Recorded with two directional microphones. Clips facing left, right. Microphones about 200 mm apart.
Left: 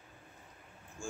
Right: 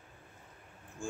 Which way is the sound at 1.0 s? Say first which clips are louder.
Right 2 dB; 20° right (ahead or behind).